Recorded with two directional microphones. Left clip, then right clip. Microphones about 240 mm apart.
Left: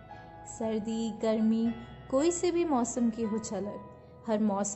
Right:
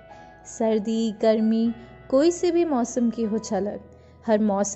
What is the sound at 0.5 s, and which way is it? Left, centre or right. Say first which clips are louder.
A woman's voice: right 10 dB; right.